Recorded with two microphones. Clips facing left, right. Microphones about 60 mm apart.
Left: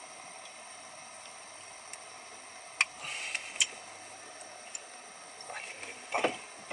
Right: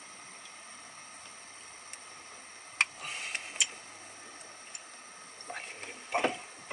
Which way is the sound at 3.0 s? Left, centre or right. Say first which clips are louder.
Even; centre.